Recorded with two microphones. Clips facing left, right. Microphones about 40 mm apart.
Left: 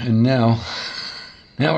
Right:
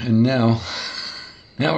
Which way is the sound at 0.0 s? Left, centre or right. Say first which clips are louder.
Even; centre.